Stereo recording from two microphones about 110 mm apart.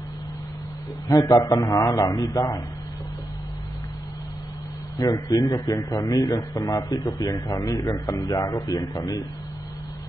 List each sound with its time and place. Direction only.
1.0 s a man's voice: 35° left (ahead or behind)
4.9 s a man's voice: 35° left (ahead or behind)